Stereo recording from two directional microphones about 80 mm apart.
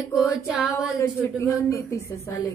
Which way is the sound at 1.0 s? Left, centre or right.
Left.